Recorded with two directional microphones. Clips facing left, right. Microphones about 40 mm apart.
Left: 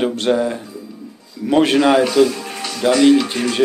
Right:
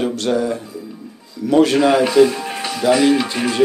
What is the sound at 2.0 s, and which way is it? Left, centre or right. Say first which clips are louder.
Music: right 2 dB; centre.